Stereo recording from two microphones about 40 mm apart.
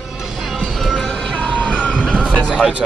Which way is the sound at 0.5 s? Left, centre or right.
Centre.